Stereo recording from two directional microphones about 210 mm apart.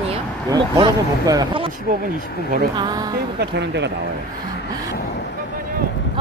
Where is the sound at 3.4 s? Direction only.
55° right (ahead or behind).